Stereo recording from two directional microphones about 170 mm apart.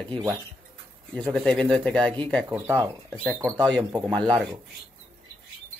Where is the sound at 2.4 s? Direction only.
15° right (ahead or behind).